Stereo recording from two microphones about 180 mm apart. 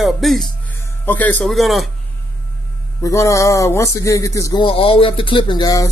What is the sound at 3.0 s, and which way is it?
Speech, 15° left (ahead or behind).